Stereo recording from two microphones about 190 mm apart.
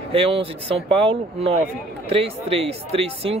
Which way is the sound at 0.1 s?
30° right (ahead or behind).